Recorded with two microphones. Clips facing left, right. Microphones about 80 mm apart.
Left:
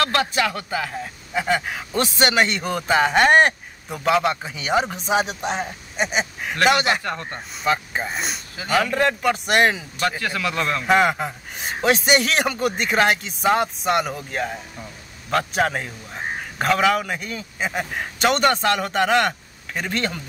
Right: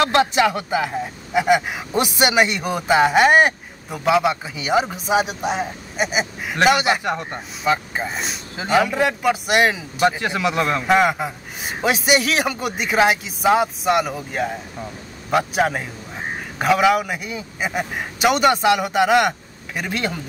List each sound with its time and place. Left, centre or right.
0.0 s a man's voice: right; by 7.0 s centre
7.0 s a man's voice: centre
7.6 s a man's voice: centre
8.5 s a man's voice: centre
8.8 s a man's voice: centre
10.0 s a man's voice: centre
10.9 s a man's voice: centre